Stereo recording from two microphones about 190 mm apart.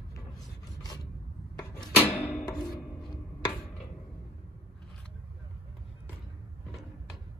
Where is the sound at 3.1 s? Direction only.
20° left (ahead or behind).